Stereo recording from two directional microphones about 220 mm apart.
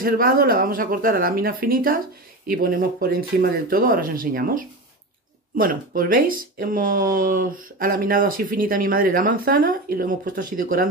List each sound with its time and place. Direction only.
0.0 s speech: 40° right (ahead or behind)